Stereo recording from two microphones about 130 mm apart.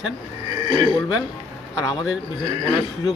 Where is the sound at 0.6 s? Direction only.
35° right (ahead or behind).